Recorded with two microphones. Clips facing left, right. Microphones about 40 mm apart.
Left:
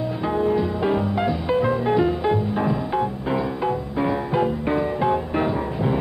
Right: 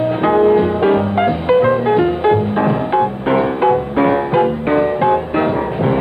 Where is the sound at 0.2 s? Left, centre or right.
Right.